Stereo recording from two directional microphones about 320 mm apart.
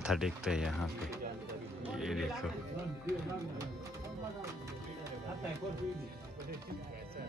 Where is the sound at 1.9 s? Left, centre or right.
Centre.